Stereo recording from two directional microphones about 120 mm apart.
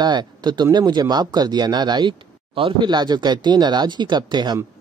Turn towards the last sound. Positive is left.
turn(degrees=-35)  # may be behind; listen again after turning